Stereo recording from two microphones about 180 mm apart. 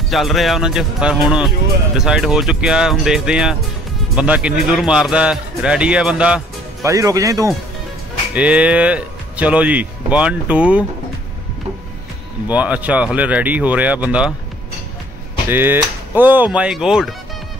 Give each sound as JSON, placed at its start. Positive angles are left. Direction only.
{"t": 0.1, "sound": "speech", "side_deg": 0}
{"t": 6.8, "sound": "speech", "side_deg": -15}
{"t": 8.4, "sound": "speech", "side_deg": -5}
{"t": 12.4, "sound": "speech", "side_deg": -5}
{"t": 15.4, "sound": "speech", "side_deg": -10}